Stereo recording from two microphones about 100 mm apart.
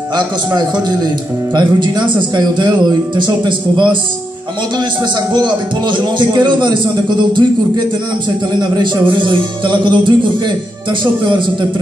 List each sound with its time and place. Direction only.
0.1 s music: 50° right (ahead or behind)
5.3 s music: 50° right (ahead or behind)